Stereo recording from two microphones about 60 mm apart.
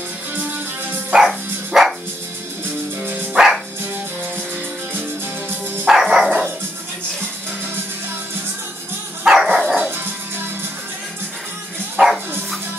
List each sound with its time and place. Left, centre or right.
1.1 s music: centre
1.7 s music: centre
3.3 s music: centre
5.9 s dog: centre
9.2 s dog: centre
12.0 s bow-wow: centre